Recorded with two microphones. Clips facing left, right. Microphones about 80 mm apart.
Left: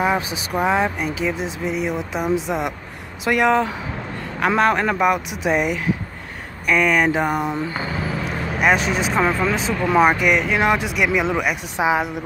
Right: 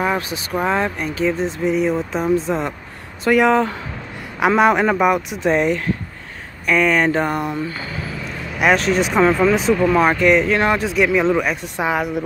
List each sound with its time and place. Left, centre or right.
0.0 s speech: centre
7.4 s speech: left
8.5 s speech: centre
9.8 s speech: centre